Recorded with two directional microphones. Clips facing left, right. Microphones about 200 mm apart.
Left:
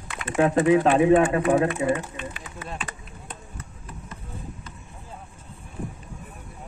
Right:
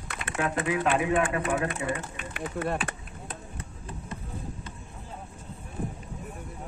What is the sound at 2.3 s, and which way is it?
Speech, 60° right (ahead or behind).